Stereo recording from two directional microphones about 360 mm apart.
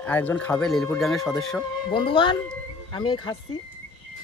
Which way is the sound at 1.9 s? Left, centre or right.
Centre.